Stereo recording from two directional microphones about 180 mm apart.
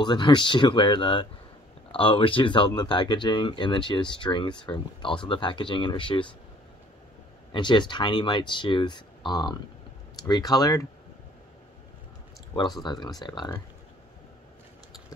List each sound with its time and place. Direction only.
0.0 s speech: 25° left (ahead or behind)
7.5 s speech: 25° left (ahead or behind)
12.8 s speech: 25° left (ahead or behind)